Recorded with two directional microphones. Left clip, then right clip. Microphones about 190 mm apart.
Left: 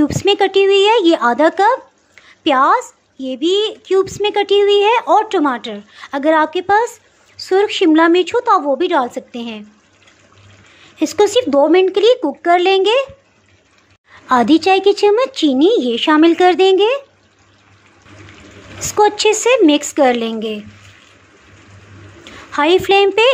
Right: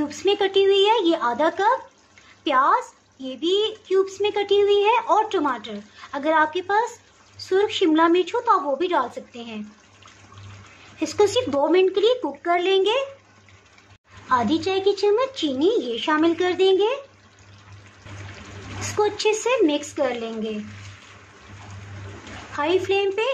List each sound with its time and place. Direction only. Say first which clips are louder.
0.0 s a woman's voice: left 8 dB; 30° left (ahead or behind)
11.0 s a woman's voice: left 7 dB; 30° left (ahead or behind)
14.3 s a woman's voice: left 10 dB; 35° left (ahead or behind)
18.8 s a woman's voice: left 10 dB; 35° left (ahead or behind)
22.5 s a woman's voice: left 10 dB; 45° left (ahead or behind)